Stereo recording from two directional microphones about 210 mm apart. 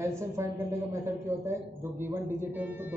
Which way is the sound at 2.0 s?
10° right (ahead or behind).